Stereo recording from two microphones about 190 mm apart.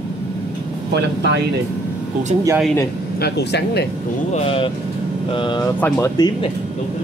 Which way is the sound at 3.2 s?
60° left (ahead or behind).